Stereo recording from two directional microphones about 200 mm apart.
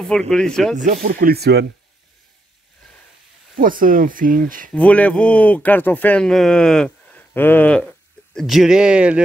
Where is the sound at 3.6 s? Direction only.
45° right (ahead or behind).